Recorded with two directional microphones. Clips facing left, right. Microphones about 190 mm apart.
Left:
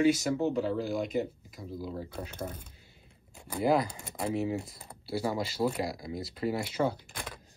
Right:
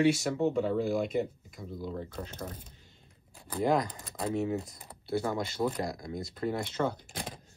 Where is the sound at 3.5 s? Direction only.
5° left (ahead or behind).